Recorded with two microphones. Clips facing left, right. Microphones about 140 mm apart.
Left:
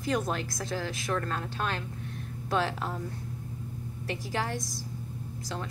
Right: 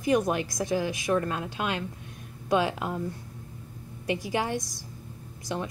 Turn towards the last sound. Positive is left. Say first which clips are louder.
# right 4 dB
turn(degrees=-15)  # may be behind; listen again after turning